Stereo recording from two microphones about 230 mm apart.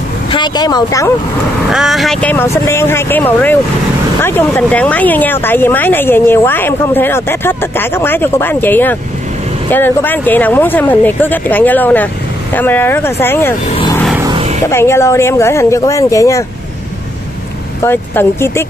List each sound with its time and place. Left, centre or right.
0.3 s speech: centre
1.7 s speech: centre
13.7 s vehicle: left
14.1 s vehicle: centre
14.7 s speech: centre
17.8 s speech: centre